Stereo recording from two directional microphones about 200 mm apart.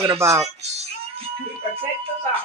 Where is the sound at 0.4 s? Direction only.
35° right (ahead or behind).